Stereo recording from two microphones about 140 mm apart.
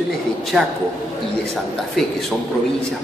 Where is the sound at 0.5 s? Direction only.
Centre (ahead or behind).